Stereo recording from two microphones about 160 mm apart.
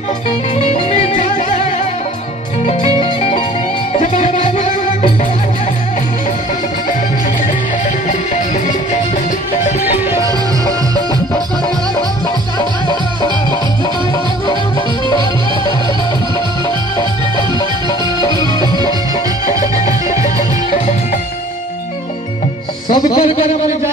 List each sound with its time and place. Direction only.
0.6 s music: 45° left (ahead or behind)
2.6 s music: 40° left (ahead or behind)
12.5 s music: 25° left (ahead or behind)
17.4 s music: 25° left (ahead or behind)
23.0 s a sound: 50° left (ahead or behind)